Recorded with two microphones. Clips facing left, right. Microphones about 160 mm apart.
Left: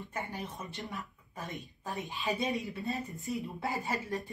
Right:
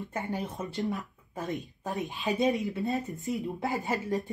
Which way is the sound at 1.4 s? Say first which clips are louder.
Right 7 dB; 20° right (ahead or behind).